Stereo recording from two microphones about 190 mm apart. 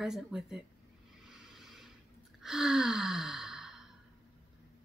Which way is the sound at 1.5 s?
Centre (ahead or behind).